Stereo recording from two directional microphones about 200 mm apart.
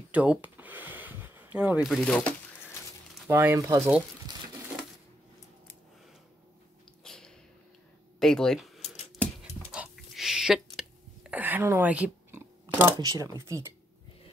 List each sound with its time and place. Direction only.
0.1 s speech: 5° right (ahead or behind)
3.3 s speech: 10° right (ahead or behind)
7.0 s a sound: 5° left (ahead or behind)
8.2 s speech: 5° left (ahead or behind)
9.1 s dog: centre (ahead or behind)
9.7 s a sound: 5° right (ahead or behind)
13.4 s speech: 15° right (ahead or behind)